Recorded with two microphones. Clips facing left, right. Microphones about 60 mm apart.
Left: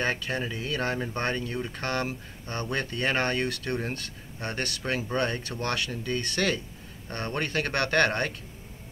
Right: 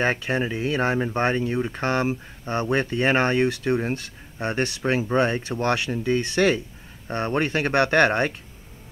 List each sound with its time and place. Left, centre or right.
0.0 s speech: right